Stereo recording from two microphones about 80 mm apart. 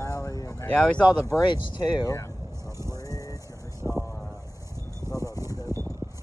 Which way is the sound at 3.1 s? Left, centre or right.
Left.